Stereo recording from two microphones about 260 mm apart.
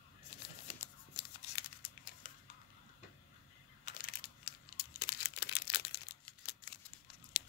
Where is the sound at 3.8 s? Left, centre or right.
Left.